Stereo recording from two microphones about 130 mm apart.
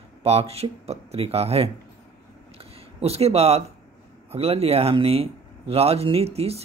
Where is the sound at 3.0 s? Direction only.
50° right (ahead or behind).